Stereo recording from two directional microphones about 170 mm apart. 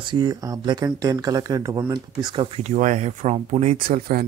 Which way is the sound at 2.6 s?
45° right (ahead or behind).